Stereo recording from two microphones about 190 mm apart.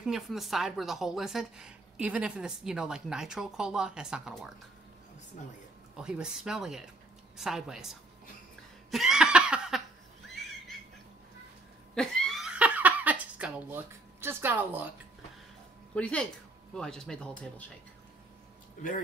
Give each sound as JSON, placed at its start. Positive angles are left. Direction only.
{"t": 0.0, "sound": "a woman's voice", "side_deg": 0}
{"t": 5.9, "sound": "a woman's voice", "side_deg": -5}
{"t": 8.9, "sound": "a sound", "side_deg": -5}
{"t": 11.9, "sound": "a sound", "side_deg": 0}
{"t": 15.9, "sound": "a woman's voice", "side_deg": 5}
{"t": 18.8, "sound": "speech", "side_deg": 45}